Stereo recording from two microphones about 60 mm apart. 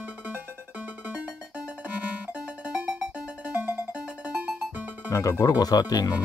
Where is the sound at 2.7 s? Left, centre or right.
Right.